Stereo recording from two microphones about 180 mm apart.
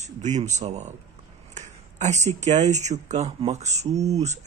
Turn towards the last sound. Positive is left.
turn(degrees=-40)  # may be behind; listen again after turning